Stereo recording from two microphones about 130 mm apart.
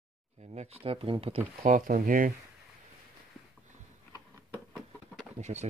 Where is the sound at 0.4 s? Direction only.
60° right (ahead or behind).